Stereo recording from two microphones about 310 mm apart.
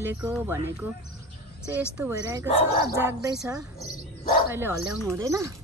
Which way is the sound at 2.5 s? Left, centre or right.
Left.